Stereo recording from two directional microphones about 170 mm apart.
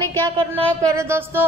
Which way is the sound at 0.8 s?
15° right (ahead or behind).